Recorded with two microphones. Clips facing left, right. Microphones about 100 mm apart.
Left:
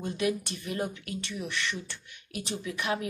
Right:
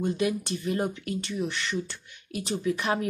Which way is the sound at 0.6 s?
30° right (ahead or behind).